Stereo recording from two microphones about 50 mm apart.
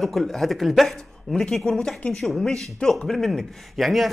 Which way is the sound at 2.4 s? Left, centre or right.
Centre.